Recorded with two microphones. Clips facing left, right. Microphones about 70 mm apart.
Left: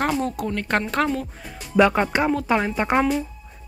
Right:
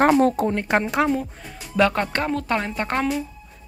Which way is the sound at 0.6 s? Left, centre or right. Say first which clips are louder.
Left 3 dB; centre.